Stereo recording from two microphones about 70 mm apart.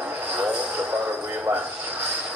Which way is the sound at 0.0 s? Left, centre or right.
Right.